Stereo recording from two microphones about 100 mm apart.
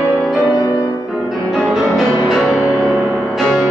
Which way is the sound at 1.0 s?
Centre (ahead or behind).